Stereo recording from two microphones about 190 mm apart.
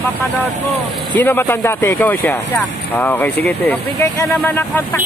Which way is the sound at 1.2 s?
10° left (ahead or behind).